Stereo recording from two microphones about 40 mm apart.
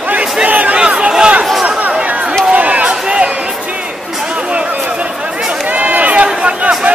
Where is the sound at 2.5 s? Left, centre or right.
Right.